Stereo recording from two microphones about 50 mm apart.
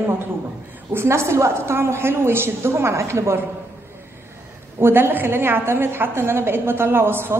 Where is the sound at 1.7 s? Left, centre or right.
Right.